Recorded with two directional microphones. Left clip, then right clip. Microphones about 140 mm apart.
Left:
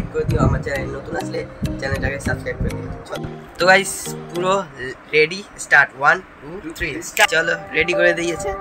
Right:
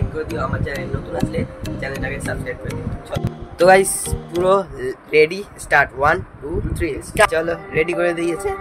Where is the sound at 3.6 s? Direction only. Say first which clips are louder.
Right 2 dB; 65° right (ahead or behind).